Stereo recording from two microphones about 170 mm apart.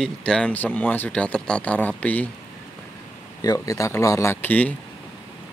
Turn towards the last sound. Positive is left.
turn(degrees=10)  # may be behind; listen again after turning